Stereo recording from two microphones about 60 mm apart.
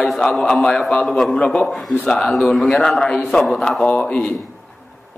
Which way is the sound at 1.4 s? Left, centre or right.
Centre.